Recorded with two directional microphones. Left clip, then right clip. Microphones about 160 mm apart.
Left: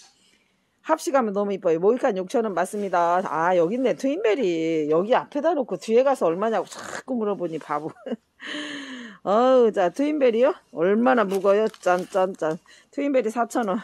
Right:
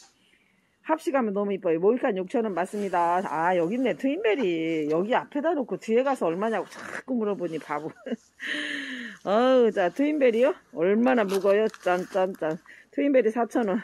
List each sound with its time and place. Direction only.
0.8 s speech: 30° left (ahead or behind)